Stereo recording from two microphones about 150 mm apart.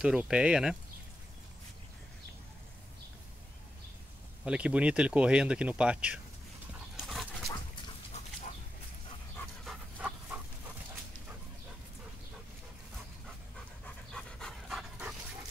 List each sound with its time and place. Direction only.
0.0 s speech: 10° right (ahead or behind)
4.5 s speech: 10° right (ahead or behind)
7.1 s dog: centre (ahead or behind)
8.1 s chicken: 45° left (ahead or behind)
9.9 s dog: 10° right (ahead or behind)
13.8 s pant: 5° left (ahead or behind)